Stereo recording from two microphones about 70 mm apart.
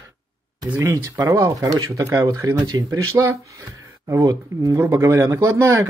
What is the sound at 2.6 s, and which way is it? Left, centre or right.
Speech, right.